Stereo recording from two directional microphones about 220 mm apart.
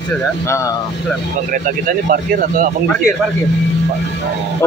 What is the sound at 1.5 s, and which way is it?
Speech, 40° right (ahead or behind).